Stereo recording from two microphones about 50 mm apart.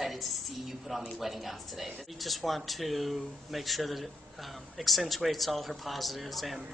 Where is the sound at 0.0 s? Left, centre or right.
Centre.